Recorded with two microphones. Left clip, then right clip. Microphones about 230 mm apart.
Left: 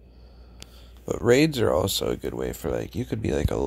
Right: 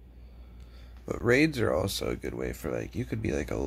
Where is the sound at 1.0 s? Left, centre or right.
Centre.